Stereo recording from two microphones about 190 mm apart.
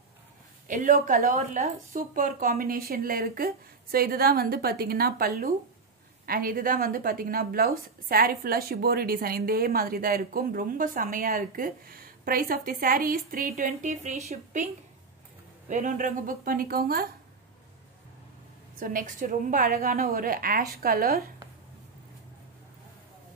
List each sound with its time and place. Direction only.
0.7 s a woman's voice: 45° right (ahead or behind)
15.7 s a woman's voice: 40° right (ahead or behind)
18.8 s a woman's voice: 45° right (ahead or behind)